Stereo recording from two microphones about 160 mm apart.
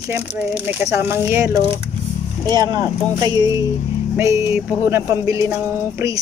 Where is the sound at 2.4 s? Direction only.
25° right (ahead or behind).